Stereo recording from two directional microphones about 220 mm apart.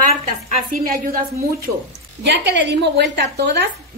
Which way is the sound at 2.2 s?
50° right (ahead or behind).